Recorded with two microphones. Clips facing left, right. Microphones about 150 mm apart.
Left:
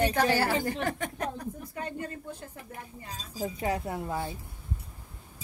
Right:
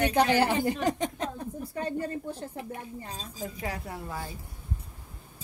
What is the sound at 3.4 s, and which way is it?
Speech, 30° left (ahead or behind).